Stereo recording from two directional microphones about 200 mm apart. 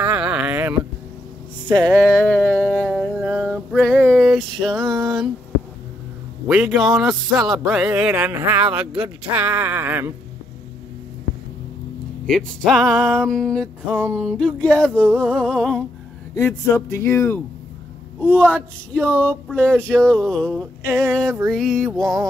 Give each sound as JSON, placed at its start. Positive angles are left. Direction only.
{"t": 0.0, "sound": "a sound", "side_deg": -5}
{"t": 1.9, "sound": "a sound", "side_deg": 0}
{"t": 4.7, "sound": "a sound", "side_deg": -15}
{"t": 6.4, "sound": "music", "side_deg": -5}
{"t": 9.2, "sound": "speech", "side_deg": -10}
{"t": 12.3, "sound": "music", "side_deg": 0}
{"t": 16.3, "sound": "speech", "side_deg": 15}
{"t": 18.3, "sound": "speech", "side_deg": -10}
{"t": 19.0, "sound": "speech", "side_deg": 5}
{"t": 19.8, "sound": "music", "side_deg": 5}